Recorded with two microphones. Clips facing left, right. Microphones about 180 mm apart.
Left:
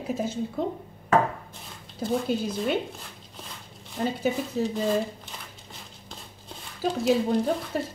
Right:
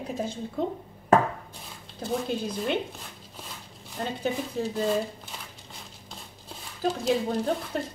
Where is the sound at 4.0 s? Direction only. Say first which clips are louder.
Left 3 dB; 5° left (ahead or behind).